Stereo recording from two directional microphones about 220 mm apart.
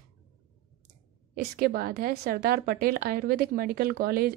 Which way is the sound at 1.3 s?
45° right (ahead or behind).